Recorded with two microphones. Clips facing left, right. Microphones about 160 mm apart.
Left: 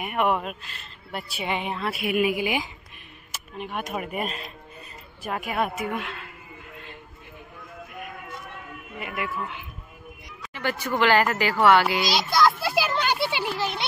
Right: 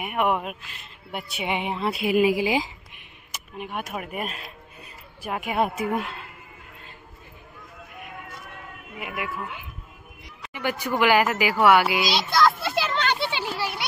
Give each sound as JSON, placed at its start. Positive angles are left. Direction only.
{"t": 0.0, "sound": "speech", "side_deg": -10}
{"t": 3.5, "sound": "speech", "side_deg": -10}
{"t": 5.8, "sound": "a woman's voice", "side_deg": -35}
{"t": 9.0, "sound": "speech", "side_deg": -10}
{"t": 12.3, "sound": "children playing", "side_deg": 0}